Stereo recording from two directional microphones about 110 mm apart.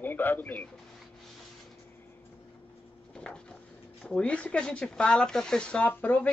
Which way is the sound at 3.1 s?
10° left (ahead or behind).